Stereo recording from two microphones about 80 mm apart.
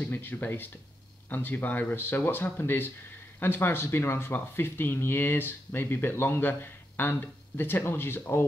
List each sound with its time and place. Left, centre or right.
0.0 s speech: left